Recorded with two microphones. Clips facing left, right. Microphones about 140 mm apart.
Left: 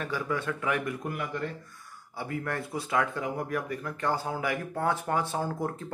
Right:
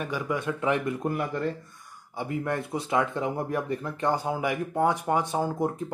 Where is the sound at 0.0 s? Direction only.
15° right (ahead or behind); by 1.4 s 30° right (ahead or behind).